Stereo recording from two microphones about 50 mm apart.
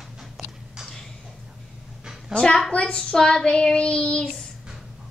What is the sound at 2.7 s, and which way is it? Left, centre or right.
Child singing, left.